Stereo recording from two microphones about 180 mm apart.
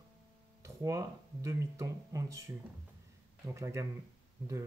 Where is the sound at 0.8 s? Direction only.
15° right (ahead or behind).